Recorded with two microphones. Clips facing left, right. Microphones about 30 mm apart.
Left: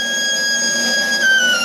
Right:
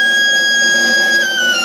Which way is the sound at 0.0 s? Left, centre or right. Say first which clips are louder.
Right 7 dB; centre.